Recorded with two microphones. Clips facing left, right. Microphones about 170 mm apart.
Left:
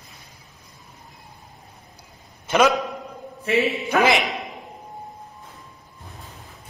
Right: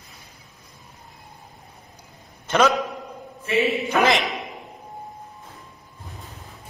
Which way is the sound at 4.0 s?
Centre (ahead or behind).